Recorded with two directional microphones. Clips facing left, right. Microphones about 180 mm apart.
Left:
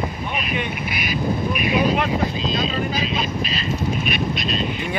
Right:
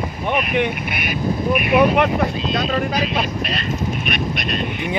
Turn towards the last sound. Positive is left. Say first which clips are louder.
# even
turn(degrees=-60)  # may be behind; listen again after turning